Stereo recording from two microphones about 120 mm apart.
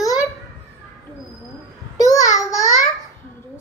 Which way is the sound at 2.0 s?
30° left (ahead or behind).